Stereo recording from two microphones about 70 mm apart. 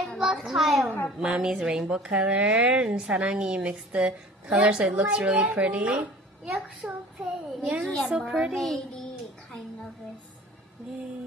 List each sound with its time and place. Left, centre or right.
0.2 s a child's voice: centre